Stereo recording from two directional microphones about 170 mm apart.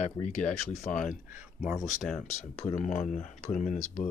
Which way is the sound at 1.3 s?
10° right (ahead or behind).